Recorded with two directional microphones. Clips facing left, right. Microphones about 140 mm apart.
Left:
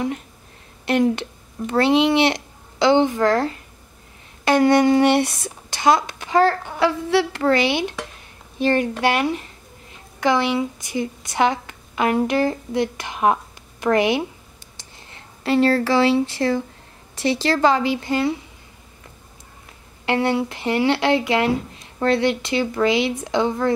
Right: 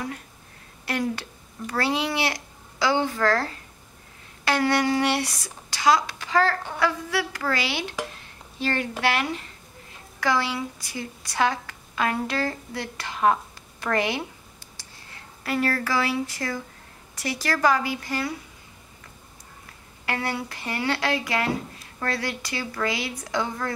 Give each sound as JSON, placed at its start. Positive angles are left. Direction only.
{"t": 0.8, "sound": "a woman's voice", "side_deg": 20}
{"t": 20.1, "sound": "speech", "side_deg": 25}